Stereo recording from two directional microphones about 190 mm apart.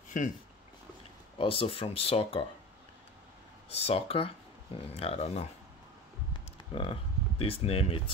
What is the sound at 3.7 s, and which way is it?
Speech, 30° left (ahead or behind).